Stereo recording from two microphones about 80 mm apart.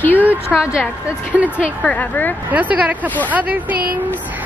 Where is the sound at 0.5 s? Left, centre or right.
Centre.